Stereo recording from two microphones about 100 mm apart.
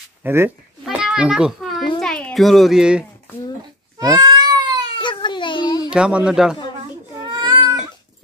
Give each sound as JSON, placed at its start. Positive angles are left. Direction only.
{"t": 0.2, "sound": "speech", "side_deg": -25}
{"t": 0.8, "sound": "a sound", "side_deg": -5}
{"t": 2.3, "sound": "speech", "side_deg": 0}
{"t": 4.0, "sound": "cat", "side_deg": -40}
{"t": 4.9, "sound": "a sound", "side_deg": 50}
{"t": 5.9, "sound": "speech", "side_deg": -10}
{"t": 7.2, "sound": "baby cry", "side_deg": -50}